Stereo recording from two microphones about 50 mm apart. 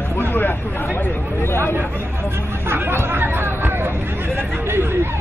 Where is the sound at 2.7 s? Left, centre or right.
Right.